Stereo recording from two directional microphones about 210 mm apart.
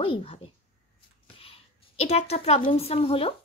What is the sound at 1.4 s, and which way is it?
A woman's voice, 30° left (ahead or behind).